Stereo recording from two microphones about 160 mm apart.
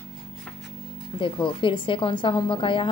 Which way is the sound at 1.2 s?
30° left (ahead or behind).